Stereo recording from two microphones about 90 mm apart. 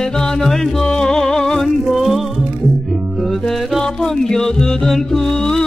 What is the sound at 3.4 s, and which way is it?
Music, 5° left (ahead or behind).